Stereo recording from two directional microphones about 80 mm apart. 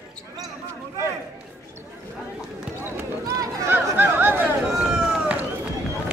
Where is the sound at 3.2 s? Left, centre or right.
Right.